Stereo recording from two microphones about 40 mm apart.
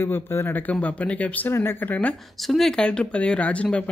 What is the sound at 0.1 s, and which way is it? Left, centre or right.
Speech, left.